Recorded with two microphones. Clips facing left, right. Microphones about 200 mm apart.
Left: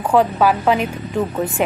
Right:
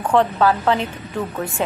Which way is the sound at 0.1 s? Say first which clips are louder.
Left 2 dB; 10° left (ahead or behind).